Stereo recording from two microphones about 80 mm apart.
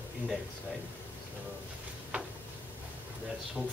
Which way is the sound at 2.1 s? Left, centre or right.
Centre.